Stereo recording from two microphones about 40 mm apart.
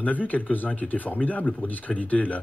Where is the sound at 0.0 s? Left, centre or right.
Left.